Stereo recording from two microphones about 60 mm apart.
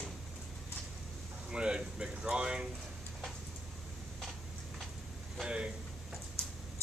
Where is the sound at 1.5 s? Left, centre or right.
Centre.